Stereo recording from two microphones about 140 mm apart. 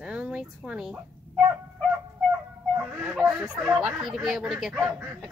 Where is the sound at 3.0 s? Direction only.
5° right (ahead or behind).